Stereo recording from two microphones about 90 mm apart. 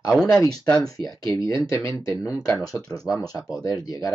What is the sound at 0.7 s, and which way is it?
Speech, 45° left (ahead or behind).